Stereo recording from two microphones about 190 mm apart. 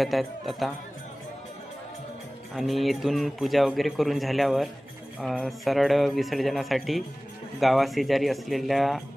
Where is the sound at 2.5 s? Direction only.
Centre (ahead or behind).